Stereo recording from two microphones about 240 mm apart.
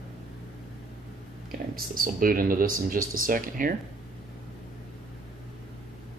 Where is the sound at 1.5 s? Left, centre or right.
Right.